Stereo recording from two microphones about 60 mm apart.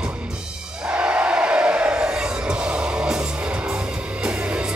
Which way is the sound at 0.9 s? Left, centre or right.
Centre.